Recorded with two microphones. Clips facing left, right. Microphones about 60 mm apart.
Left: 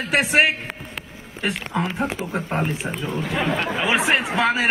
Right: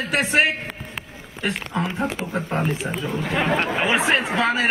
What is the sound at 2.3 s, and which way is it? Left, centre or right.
Speech, left.